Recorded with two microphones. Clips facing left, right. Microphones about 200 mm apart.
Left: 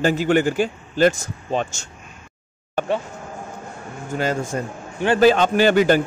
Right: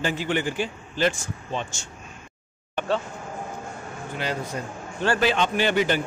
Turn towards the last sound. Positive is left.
turn(degrees=45)  # may be behind; listen again after turning